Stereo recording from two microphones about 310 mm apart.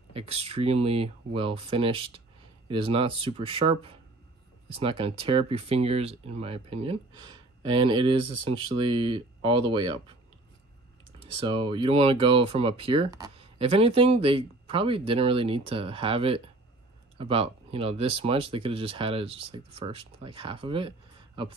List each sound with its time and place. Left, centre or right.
0.1 s speech: centre
11.3 s speech: centre